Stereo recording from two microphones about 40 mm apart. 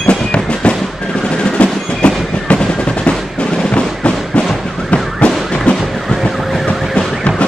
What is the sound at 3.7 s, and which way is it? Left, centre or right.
Fireworks, left.